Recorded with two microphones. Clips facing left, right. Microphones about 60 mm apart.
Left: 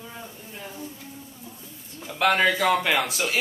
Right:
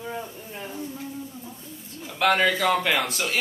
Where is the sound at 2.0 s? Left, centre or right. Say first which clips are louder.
Even; centre.